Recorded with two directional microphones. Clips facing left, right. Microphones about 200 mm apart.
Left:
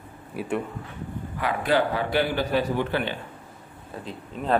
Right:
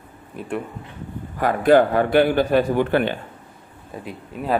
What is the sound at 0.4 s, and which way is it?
Speech, 5° left (ahead or behind).